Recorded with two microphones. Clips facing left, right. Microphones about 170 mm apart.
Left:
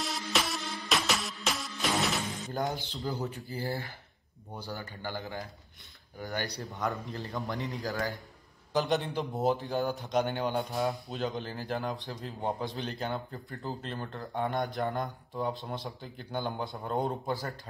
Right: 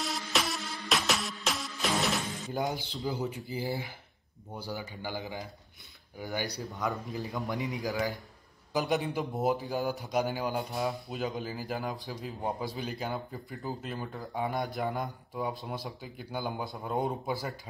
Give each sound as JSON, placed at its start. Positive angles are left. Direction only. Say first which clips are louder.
{"t": 0.0, "sound": "music", "louder": "even", "side_deg": 0}
{"t": 3.1, "sound": "speech", "louder": "right 2 dB", "side_deg": -15}
{"t": 7.5, "sound": "speech", "louder": "right 4 dB", "side_deg": -15}
{"t": 7.9, "sound": "speech", "louder": "right 2 dB", "side_deg": 0}